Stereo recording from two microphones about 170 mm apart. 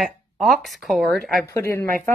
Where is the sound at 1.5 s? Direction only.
15° left (ahead or behind).